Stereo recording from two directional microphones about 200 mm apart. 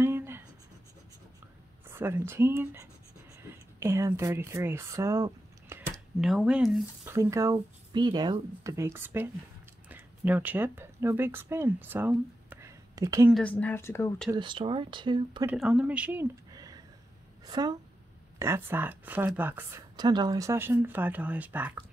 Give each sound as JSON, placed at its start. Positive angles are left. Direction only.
{"t": 0.0, "sound": "writing", "side_deg": -10}
{"t": 1.9, "sound": "speech", "side_deg": -10}
{"t": 6.2, "sound": "speech", "side_deg": 0}
{"t": 7.1, "sound": "speech", "side_deg": -15}
{"t": 13.3, "sound": "a woman's voice", "side_deg": 5}
{"t": 14.3, "sound": "speech", "side_deg": -25}
{"t": 15.4, "sound": "speech", "side_deg": -5}
{"t": 16.5, "sound": "a sound", "side_deg": -20}
{"t": 17.5, "sound": "speech", "side_deg": -20}
{"t": 20.0, "sound": "speech", "side_deg": -20}